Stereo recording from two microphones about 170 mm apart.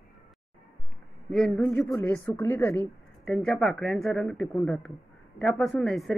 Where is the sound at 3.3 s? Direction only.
Centre (ahead or behind).